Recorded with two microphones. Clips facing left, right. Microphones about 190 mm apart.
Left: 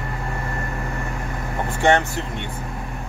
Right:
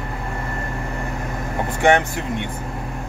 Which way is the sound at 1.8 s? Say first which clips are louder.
Right 1 dB; 15° right (ahead or behind).